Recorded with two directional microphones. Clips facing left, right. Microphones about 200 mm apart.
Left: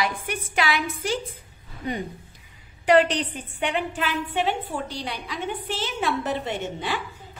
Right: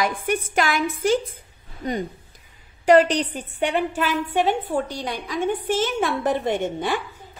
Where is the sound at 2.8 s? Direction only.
40° right (ahead or behind).